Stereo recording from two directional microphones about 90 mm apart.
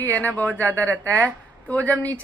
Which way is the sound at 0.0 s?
20° left (ahead or behind).